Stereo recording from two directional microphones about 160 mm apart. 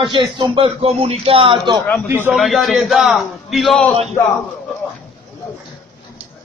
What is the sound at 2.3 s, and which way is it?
A man's voice, centre (ahead or behind).